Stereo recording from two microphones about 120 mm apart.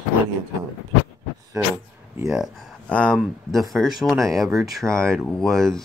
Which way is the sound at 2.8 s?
10° left (ahead or behind).